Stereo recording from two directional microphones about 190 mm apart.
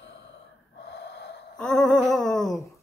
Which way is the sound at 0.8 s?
65° left (ahead or behind).